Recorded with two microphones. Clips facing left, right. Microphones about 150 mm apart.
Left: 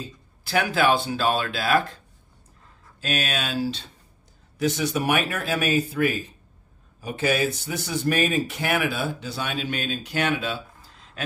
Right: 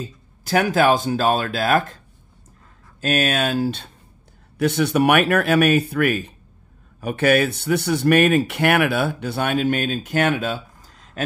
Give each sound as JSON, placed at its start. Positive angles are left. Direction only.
{"t": 0.0, "sound": "speech", "side_deg": -45}
{"t": 3.0, "sound": "speech", "side_deg": -50}